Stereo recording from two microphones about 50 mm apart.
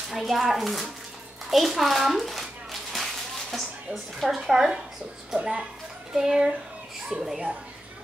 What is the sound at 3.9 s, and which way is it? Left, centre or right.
A woman's voice, centre.